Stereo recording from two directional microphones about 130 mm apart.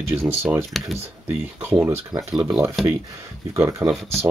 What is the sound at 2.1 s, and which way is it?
Speech, 30° right (ahead or behind).